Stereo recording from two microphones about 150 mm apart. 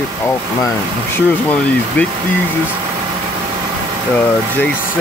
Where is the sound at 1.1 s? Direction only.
10° left (ahead or behind).